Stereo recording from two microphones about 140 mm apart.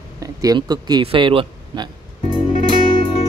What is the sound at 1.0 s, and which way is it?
Speech, 40° right (ahead or behind).